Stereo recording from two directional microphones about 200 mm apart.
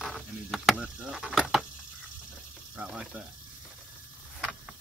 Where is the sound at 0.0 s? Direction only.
Centre (ahead or behind).